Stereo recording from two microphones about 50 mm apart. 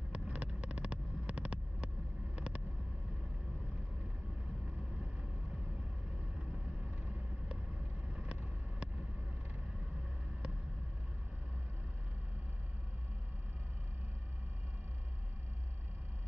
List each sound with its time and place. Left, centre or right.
0.1 s vehicle: right
6.8 s vehicle: right